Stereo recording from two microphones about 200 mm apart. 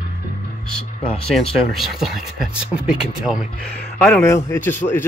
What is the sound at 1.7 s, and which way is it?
A man's voice, centre (ahead or behind).